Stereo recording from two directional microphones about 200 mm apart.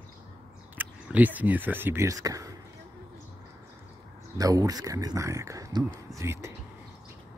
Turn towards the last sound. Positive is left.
turn(degrees=-15)  # may be behind; listen again after turning